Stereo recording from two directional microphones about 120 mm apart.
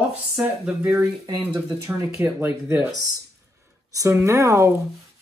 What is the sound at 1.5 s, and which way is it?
Speech, 25° right (ahead or behind).